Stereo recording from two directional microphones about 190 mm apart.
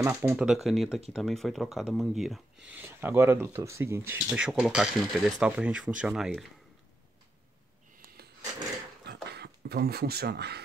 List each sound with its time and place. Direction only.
0.0 s speech: 10° right (ahead or behind)
2.7 s speech: 10° right (ahead or behind)
9.0 s a sound: 60° right (ahead or behind)